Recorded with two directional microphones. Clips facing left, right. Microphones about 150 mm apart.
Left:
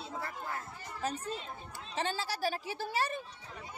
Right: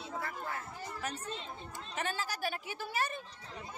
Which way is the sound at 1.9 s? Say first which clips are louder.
Left 3 dB; 30° left (ahead or behind).